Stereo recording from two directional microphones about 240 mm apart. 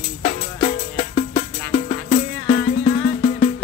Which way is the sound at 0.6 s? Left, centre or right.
Left.